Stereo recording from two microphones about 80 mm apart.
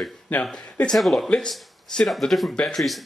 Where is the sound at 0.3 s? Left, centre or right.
Centre.